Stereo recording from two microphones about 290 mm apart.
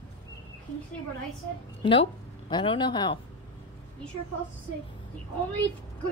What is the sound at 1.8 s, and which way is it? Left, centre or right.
Speech, centre.